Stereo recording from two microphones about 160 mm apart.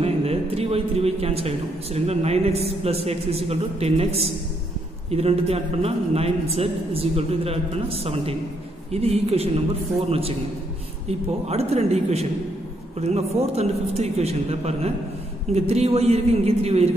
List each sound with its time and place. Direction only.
0.0 s a man's voice: 40° right (ahead or behind)